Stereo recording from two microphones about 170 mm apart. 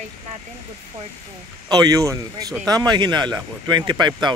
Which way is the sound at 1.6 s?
25° right (ahead or behind).